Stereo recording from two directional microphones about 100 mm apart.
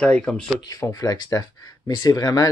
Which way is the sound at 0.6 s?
35° left (ahead or behind).